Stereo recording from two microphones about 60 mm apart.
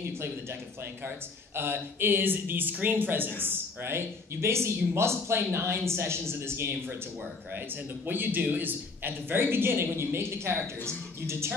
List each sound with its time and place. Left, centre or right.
1.0 s speech: right
8.1 s speech: right